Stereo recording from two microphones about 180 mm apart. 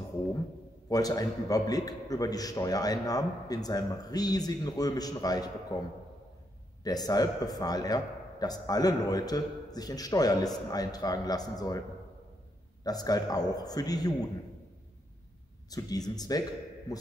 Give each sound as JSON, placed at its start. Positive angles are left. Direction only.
{"t": 0.8, "sound": "speech", "side_deg": 20}
{"t": 12.8, "sound": "speech", "side_deg": 20}
{"t": 15.7, "sound": "speech", "side_deg": 20}